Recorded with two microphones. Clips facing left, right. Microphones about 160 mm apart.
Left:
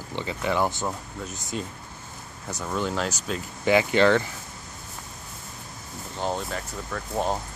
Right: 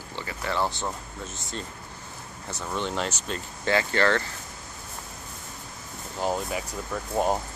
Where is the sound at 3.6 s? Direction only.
15° left (ahead or behind).